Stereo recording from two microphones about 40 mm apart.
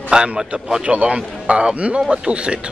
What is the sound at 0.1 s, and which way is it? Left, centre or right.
Speech, right.